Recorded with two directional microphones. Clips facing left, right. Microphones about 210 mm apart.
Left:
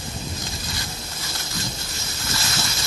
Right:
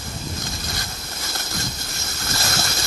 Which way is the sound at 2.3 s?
50° right (ahead or behind).